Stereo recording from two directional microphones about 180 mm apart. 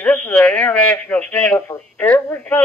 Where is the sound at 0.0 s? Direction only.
10° left (ahead or behind).